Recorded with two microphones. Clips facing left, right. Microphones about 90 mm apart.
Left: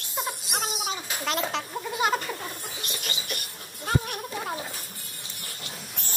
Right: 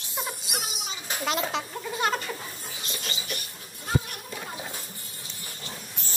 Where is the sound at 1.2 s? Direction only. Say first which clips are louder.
Right 1 dB; 5° right (ahead or behind).